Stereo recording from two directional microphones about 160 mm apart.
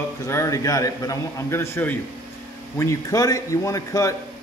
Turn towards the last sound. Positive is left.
turn(degrees=20)  # may be behind; listen again after turning